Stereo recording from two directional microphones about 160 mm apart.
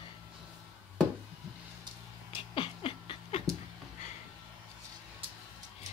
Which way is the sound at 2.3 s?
35° left (ahead or behind).